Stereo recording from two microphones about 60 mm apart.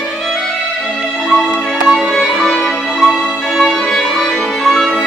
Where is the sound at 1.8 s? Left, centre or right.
Centre.